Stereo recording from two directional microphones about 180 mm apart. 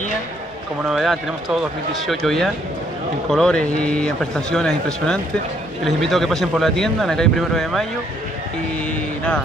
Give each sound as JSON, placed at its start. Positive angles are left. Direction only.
{"t": 0.8, "sound": "speech", "side_deg": 0}